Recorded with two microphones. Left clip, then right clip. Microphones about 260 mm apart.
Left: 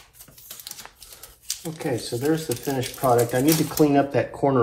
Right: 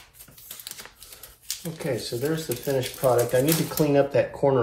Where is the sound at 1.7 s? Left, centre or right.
Left.